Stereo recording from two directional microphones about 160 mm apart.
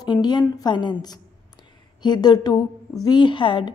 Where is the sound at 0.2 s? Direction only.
25° left (ahead or behind).